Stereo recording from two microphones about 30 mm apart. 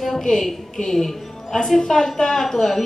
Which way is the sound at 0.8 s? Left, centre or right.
Centre.